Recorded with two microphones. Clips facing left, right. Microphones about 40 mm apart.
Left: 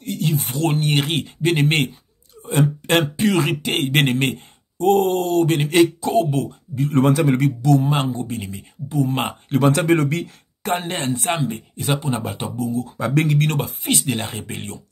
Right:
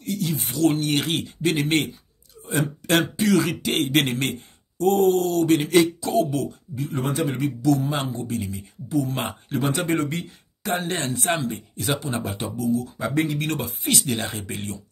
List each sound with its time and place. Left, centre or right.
0.0 s speech: left
6.9 s speech: left
7.6 s a man's voice: left
9.6 s speech: left
10.6 s speech: left
11.1 s speech: left
12.9 s speech: left
13.4 s a man's voice: left
13.8 s speech: left